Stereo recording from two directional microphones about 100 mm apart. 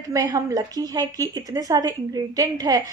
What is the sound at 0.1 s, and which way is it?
A woman's voice, 40° right (ahead or behind).